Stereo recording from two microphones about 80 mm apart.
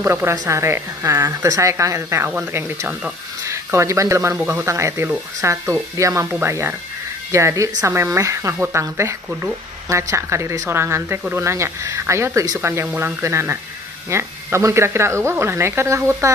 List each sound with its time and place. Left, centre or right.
0.0 s a woman's voice: right
3.4 s a woman's voice: right
9.8 s a woman's voice: right